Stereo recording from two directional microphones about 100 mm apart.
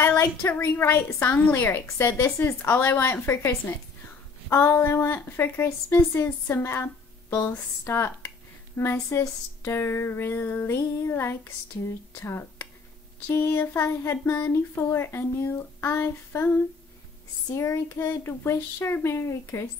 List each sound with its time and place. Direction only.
0.0 s a woman's voice: 25° left (ahead or behind)
17.6 s a woman's voice: 30° left (ahead or behind)